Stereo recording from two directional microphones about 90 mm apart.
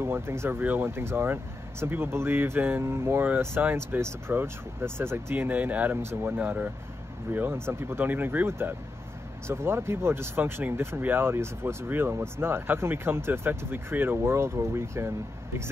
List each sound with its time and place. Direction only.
0.0 s speech: 30° right (ahead or behind)